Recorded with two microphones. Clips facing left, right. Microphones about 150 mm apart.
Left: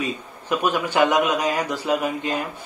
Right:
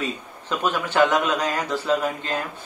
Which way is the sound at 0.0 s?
10° left (ahead or behind).